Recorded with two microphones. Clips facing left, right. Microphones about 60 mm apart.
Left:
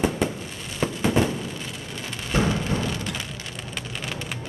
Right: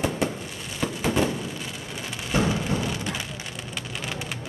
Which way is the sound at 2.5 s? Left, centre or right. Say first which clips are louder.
Left 1 dB; centre.